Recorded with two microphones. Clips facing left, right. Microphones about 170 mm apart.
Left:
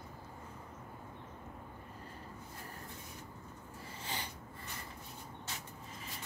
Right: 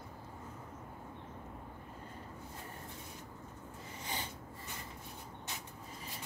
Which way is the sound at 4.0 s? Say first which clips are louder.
Right 1 dB; 20° right (ahead or behind).